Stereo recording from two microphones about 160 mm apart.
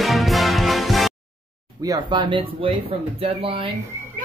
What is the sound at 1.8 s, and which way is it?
Speech, 25° right (ahead or behind).